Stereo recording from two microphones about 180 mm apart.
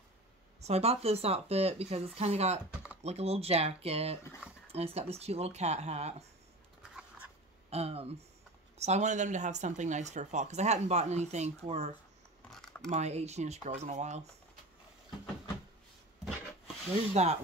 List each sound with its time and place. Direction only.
0.6 s speech: 35° right (ahead or behind)
7.7 s speech: 35° right (ahead or behind)
12.4 s a sound: 5° left (ahead or behind)
12.9 s speech: 40° right (ahead or behind)
17.1 s speech: 35° right (ahead or behind)